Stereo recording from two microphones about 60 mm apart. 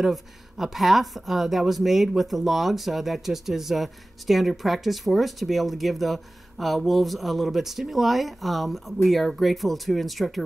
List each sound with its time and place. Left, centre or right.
0.0 s speech: centre